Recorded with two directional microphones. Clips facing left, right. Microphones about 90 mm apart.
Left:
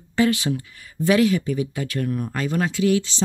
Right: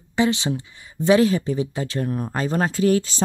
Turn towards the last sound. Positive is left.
turn(degrees=-40)  # may be behind; listen again after turning